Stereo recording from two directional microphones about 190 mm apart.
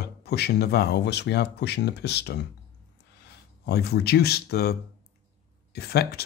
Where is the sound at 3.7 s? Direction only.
60° left (ahead or behind).